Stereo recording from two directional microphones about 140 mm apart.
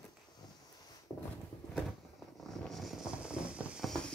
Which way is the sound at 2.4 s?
Centre (ahead or behind).